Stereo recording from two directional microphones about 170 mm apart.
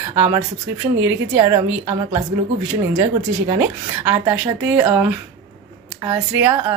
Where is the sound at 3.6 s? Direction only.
15° right (ahead or behind).